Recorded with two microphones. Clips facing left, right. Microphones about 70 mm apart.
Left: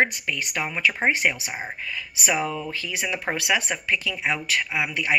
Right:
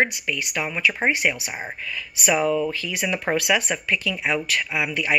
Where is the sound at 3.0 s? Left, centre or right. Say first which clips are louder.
Right 4 dB; centre.